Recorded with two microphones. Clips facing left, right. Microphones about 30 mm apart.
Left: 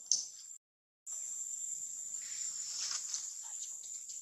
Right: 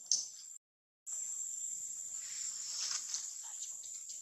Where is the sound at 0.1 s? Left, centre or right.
Centre.